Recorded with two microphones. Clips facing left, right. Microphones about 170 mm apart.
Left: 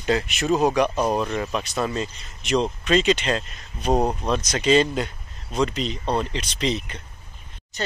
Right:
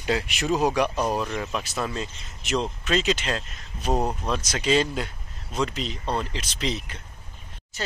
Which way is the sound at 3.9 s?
15° left (ahead or behind).